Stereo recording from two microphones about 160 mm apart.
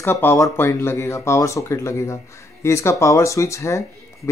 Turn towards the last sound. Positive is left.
turn(degrees=20)  # may be behind; listen again after turning